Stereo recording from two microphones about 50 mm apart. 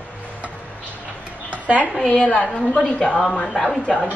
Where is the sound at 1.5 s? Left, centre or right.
Right.